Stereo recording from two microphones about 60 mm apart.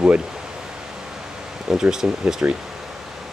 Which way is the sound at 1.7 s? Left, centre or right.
Centre.